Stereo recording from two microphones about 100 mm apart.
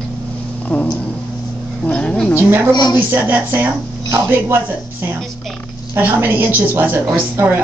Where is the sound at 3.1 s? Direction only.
20° right (ahead or behind).